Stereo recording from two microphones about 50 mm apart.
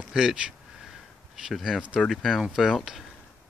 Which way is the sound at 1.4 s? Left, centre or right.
Centre.